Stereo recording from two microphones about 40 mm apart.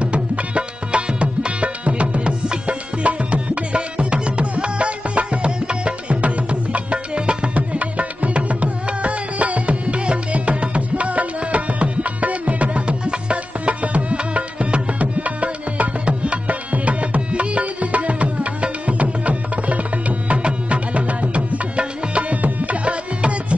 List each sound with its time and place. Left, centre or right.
0.0 s music: right
22.4 s tabla: right